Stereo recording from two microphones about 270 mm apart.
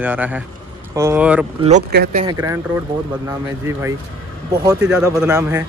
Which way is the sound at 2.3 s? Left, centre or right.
Centre.